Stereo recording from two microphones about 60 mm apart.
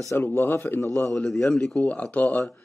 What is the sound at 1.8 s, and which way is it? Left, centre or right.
Speech, left.